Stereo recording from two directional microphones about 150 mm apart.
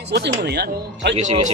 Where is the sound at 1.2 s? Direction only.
50° right (ahead or behind).